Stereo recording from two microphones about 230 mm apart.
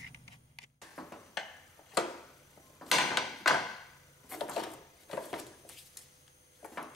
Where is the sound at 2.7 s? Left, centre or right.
Centre.